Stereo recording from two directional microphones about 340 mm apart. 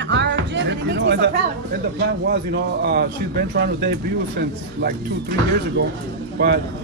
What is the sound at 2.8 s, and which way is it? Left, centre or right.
Speech, right.